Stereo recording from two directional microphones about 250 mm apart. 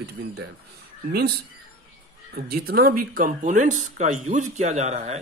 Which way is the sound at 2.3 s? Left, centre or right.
Right.